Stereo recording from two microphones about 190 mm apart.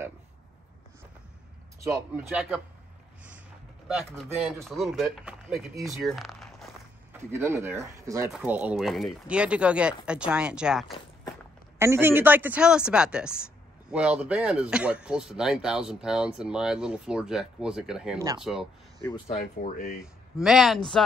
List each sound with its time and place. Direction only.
1.8 s speech: 15° right (ahead or behind)
4.4 s speech: centre (ahead or behind)
6.0 s a sound: centre (ahead or behind)
7.1 s speech: 10° right (ahead or behind)
11.8 s speech: 15° right (ahead or behind)
19.6 s speech: 50° left (ahead or behind)
20.0 s speech: 5° right (ahead or behind)